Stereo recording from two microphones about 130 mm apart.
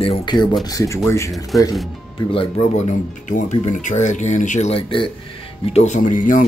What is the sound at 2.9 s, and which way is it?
Speech, 70° left (ahead or behind).